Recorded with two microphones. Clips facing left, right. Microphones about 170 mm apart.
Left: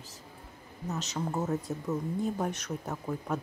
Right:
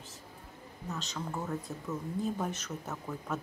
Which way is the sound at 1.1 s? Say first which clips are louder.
Left 6 dB; 20° left (ahead or behind).